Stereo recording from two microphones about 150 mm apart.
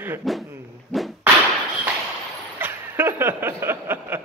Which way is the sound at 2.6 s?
15° right (ahead or behind).